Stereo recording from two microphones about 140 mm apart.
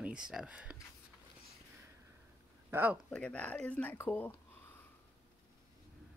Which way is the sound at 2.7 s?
15° right (ahead or behind).